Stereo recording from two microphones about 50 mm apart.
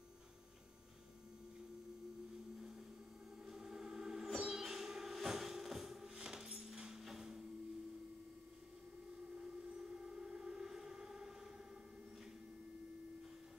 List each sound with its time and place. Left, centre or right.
3.4 s a sound: centre
9.8 s siren: centre
10.6 s civil defense siren: centre